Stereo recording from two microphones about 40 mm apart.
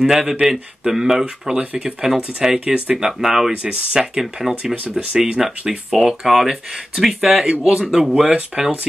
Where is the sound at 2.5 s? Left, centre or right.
Right.